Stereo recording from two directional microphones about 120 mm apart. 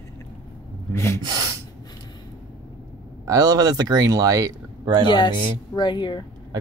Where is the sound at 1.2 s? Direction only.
35° right (ahead or behind).